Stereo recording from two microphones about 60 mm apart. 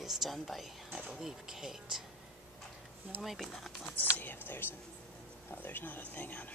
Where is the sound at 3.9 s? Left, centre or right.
Left.